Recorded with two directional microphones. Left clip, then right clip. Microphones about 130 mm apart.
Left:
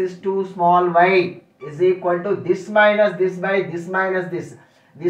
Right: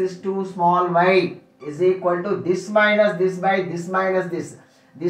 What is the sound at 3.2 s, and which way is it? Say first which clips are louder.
Speech: even; 15° right (ahead or behind).